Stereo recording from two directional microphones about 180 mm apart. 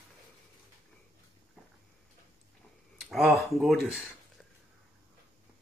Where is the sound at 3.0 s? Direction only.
Centre (ahead or behind).